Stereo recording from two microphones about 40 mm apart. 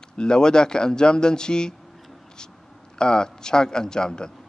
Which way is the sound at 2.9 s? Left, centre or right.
Centre.